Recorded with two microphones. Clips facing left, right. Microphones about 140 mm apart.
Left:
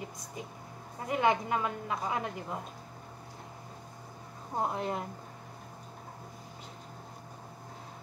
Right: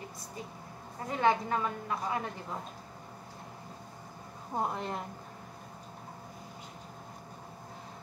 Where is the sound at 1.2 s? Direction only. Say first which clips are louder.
Even; 15° left (ahead or behind).